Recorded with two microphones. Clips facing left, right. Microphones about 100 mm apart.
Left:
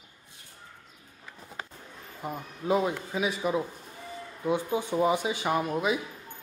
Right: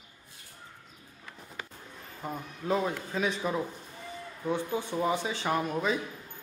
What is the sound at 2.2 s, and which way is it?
Speech, 10° left (ahead or behind).